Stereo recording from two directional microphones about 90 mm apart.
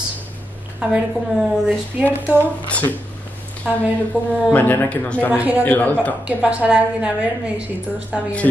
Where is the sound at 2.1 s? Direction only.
20° right (ahead or behind).